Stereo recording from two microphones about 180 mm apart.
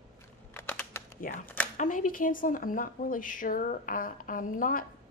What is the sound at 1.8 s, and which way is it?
A woman's voice, 45° left (ahead or behind).